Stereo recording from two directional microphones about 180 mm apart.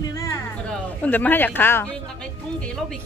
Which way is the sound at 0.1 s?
15° left (ahead or behind).